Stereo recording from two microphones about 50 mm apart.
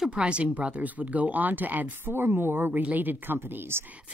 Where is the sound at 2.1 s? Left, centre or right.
Right.